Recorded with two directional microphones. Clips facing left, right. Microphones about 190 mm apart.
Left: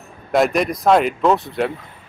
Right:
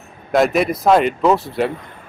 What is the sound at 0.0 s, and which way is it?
Speech, centre (ahead or behind).